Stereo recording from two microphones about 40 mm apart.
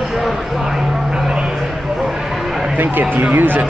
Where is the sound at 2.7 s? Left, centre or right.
Right.